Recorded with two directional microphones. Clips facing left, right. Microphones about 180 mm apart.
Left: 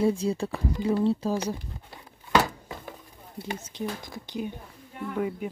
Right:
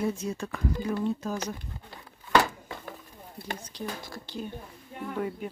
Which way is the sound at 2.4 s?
15° left (ahead or behind).